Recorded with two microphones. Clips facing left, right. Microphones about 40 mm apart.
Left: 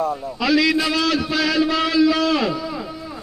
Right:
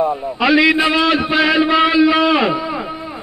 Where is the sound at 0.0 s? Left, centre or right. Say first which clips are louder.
Right 6 dB; right.